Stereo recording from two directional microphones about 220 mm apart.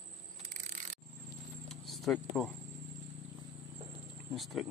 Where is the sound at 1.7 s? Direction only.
Centre (ahead or behind).